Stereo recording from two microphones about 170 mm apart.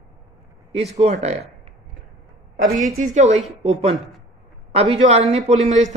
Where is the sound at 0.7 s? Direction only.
40° right (ahead or behind).